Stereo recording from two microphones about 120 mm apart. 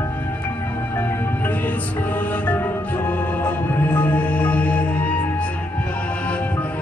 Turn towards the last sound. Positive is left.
turn(degrees=10)  # may be behind; listen again after turning